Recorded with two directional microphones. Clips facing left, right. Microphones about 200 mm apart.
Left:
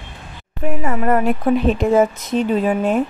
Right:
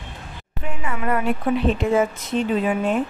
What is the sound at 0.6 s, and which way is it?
Speech, 40° left (ahead or behind).